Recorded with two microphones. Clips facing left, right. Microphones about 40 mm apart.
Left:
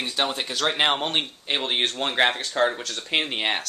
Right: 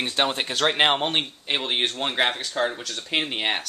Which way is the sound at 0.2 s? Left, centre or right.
Centre.